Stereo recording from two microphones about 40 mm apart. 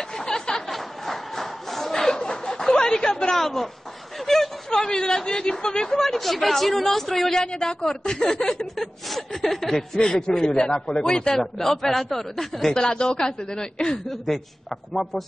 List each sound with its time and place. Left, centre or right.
0.2 s a sound: centre
0.7 s chuckle: centre
2.1 s snicker: centre
4.6 s a man's voice: centre
12.7 s speech: centre
14.0 s a woman's voice: centre